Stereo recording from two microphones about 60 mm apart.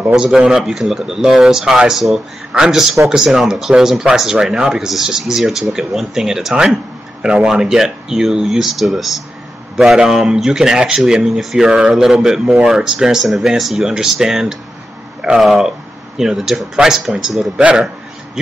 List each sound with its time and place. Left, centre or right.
0.1 s speech: centre
17.6 s a man's voice: right